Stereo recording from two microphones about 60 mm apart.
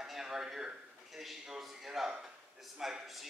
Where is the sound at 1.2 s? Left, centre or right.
Centre.